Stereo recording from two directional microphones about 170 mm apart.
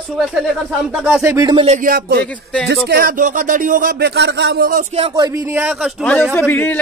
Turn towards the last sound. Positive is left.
turn(degrees=10)  # may be behind; listen again after turning